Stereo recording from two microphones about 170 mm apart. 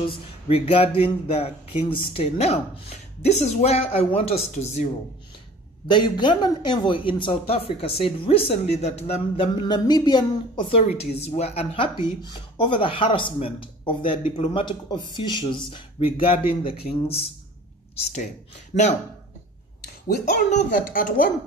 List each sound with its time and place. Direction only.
0.0 s speech: 30° left (ahead or behind)
5.9 s speech: 25° left (ahead or behind)
20.5 s speech: 55° left (ahead or behind)